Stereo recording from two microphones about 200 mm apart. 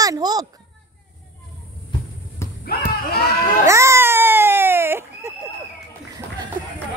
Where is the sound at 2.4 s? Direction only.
15° left (ahead or behind).